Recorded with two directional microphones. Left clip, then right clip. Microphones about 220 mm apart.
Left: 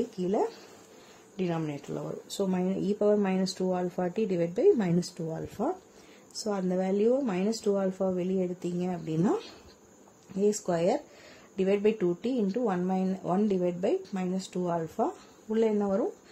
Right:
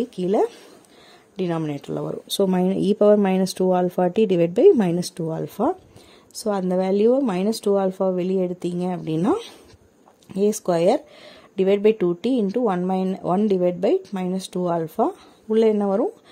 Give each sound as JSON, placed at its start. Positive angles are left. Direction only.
{"t": 0.2, "sound": "speech", "side_deg": -40}
{"t": 10.4, "sound": "speech", "side_deg": -40}